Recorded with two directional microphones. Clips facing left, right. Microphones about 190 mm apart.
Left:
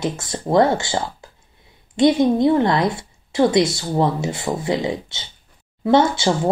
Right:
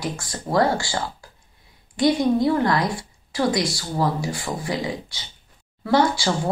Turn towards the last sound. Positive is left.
turn(degrees=25)  # may be behind; listen again after turning